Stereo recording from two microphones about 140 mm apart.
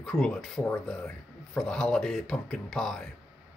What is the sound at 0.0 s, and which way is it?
Speech, 5° left (ahead or behind).